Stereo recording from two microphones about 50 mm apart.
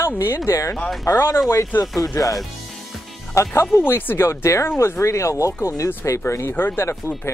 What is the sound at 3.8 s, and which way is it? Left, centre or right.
Speech, left.